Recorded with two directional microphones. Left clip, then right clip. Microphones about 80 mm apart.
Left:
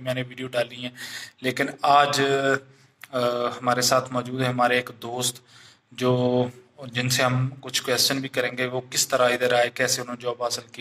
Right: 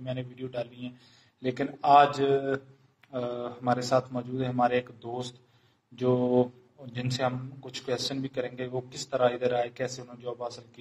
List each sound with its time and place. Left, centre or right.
0.0 s speech: centre